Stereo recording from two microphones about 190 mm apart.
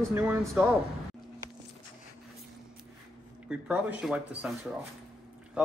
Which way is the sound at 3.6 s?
5° right (ahead or behind).